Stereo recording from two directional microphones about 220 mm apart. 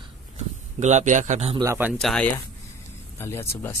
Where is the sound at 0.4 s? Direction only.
30° right (ahead or behind).